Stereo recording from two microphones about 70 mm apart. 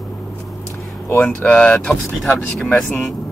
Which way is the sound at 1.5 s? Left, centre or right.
Centre.